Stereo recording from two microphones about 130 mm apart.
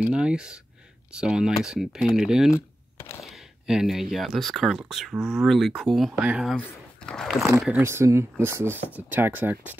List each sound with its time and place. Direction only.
0.0 s speech: 5° right (ahead or behind)
2.5 s typing: 25° left (ahead or behind)
3.3 s speech: 5° right (ahead or behind)
6.5 s speech: 5° left (ahead or behind)
7.8 s speech: 20° right (ahead or behind)